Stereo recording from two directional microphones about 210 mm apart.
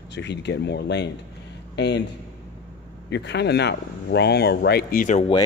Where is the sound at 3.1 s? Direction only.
55° left (ahead or behind); by 5.3 s 35° left (ahead or behind).